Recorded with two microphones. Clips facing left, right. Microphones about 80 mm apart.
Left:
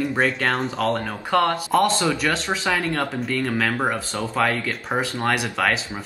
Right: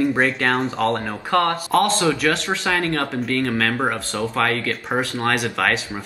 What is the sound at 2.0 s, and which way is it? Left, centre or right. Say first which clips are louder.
Speech: right 3 dB; centre.